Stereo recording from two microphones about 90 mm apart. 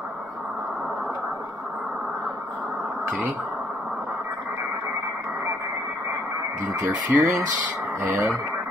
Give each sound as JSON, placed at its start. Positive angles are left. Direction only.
{"t": 6.7, "sound": "speech", "side_deg": -40}